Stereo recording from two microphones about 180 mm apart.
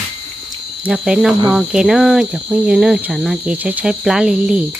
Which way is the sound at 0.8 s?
5° right (ahead or behind).